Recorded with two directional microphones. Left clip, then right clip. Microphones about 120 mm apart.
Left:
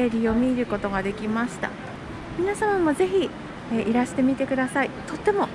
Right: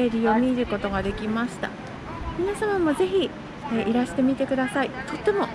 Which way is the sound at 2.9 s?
50° left (ahead or behind).